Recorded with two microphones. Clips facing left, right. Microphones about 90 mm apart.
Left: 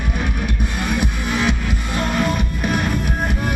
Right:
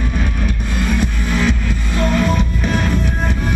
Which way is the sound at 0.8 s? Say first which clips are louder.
Right 2 dB; 15° left (ahead or behind).